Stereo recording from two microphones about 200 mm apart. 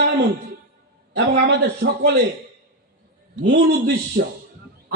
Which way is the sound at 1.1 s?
55° right (ahead or behind).